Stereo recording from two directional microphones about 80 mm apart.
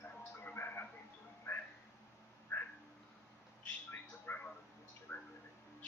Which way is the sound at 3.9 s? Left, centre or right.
Left.